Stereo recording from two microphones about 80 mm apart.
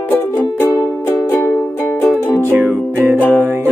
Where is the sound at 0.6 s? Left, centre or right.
Left.